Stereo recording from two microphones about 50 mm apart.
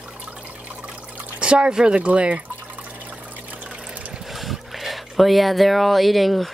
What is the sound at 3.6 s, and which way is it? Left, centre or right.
Water, centre.